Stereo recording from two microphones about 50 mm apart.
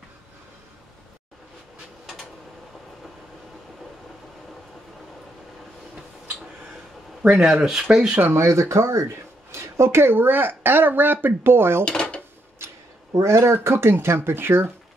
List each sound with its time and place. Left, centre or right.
7.2 s speech: centre
8.3 s speech: right
11.8 s speech: left
12.6 s a sound: right
13.2 s speech: right